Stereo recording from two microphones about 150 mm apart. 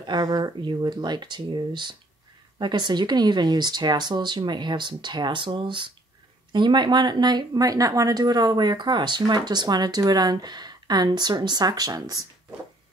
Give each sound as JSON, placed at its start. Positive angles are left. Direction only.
{"t": 0.0, "sound": "speech", "side_deg": -30}